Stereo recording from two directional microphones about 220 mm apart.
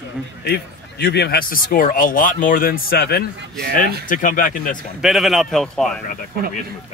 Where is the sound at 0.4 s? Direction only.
50° left (ahead or behind).